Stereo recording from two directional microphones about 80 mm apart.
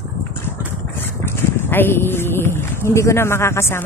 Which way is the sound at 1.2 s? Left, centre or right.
Left.